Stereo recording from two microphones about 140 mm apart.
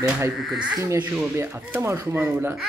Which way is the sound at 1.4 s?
15° right (ahead or behind).